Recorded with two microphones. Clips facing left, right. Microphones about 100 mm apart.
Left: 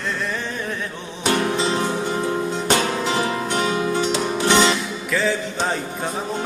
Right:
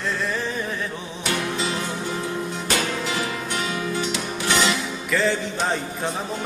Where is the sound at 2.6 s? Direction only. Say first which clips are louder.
Left 4 dB; 30° left (ahead or behind).